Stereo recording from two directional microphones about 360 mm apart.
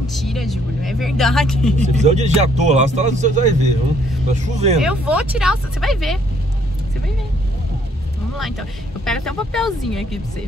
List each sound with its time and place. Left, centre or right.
0.1 s speech: centre
1.8 s speech: centre
4.7 s speech: centre
8.4 s speech: centre